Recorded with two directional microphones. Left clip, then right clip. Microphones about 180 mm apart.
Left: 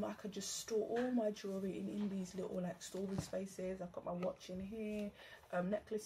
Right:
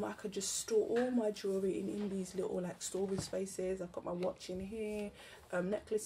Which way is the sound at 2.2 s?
10° right (ahead or behind).